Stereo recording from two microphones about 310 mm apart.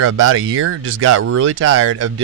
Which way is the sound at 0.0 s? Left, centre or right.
Right.